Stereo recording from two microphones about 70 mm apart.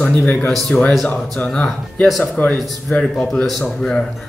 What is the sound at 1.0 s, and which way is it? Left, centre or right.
A man's voice, centre.